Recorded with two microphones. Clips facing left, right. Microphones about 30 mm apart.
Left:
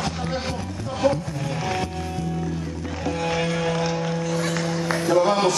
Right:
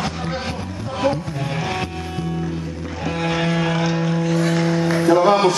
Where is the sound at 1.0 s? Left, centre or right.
Centre.